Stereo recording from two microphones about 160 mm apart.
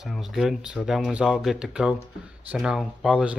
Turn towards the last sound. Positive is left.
turn(degrees=-5)  # may be behind; listen again after turning